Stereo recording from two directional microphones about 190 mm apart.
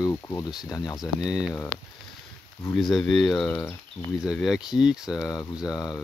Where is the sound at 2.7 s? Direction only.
Centre (ahead or behind).